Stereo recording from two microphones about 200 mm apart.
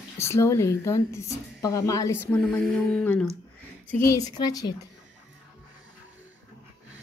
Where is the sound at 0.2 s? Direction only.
15° left (ahead or behind).